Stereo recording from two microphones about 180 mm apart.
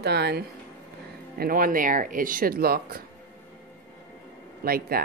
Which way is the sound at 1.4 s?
50° right (ahead or behind).